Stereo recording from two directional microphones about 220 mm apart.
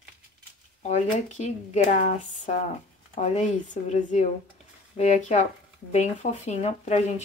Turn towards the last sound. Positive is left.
turn(degrees=30)  # may be behind; listen again after turning